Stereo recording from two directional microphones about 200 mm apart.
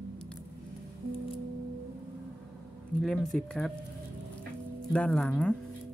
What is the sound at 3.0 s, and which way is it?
Speech, centre (ahead or behind).